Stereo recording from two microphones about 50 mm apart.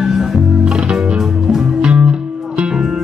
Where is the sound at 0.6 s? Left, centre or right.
Centre.